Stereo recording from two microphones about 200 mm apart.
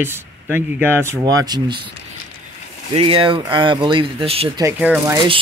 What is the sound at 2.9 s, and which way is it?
Speech, 30° right (ahead or behind).